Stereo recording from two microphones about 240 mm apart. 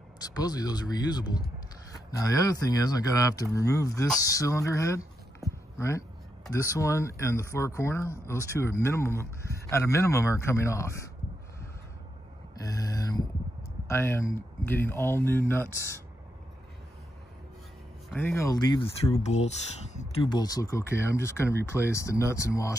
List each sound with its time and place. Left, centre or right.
0.2 s speech: centre
12.6 s a sound: centre
13.8 s speech: centre
18.1 s speech: centre
19.1 s speech: left; by 22.7 s centre